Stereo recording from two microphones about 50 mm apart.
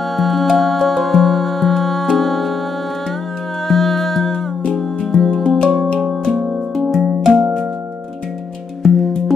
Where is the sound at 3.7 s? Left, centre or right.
Centre.